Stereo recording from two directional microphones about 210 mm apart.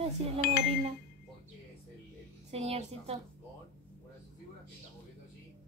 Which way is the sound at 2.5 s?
30° right (ahead or behind).